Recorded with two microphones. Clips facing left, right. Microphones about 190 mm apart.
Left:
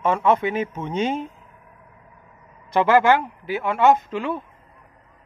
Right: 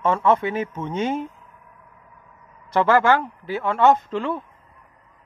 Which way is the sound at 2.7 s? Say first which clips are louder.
Left 1 dB; 15° left (ahead or behind).